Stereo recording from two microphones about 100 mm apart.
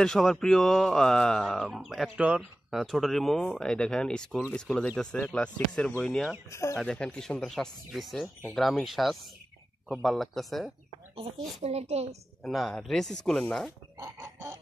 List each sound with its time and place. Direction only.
0.0 s speech: 5° left (ahead or behind)
2.1 s speech: 15° right (ahead or behind)
2.7 s speech: centre (ahead or behind)
6.5 s speech: 30° left (ahead or behind)
6.8 s speech: 10° left (ahead or behind)
11.6 s a woman's voice: 90° right
12.4 s speech: centre (ahead or behind)
13.9 s fowl: 35° right (ahead or behind)